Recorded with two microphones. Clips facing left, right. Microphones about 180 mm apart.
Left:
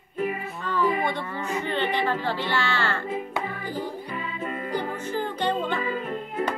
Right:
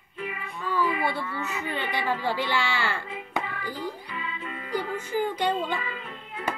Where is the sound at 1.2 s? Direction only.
45° left (ahead or behind).